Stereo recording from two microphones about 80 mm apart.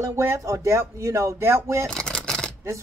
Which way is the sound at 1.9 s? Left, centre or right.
Centre.